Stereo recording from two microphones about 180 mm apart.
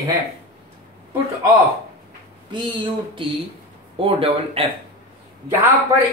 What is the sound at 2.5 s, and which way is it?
Speech, 25° right (ahead or behind).